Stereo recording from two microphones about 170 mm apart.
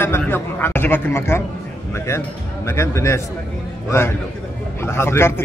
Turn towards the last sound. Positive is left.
turn(degrees=15)  # may be behind; listen again after turning